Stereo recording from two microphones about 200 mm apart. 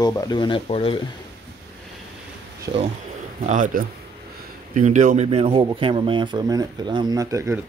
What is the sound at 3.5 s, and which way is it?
Speech, 40° right (ahead or behind).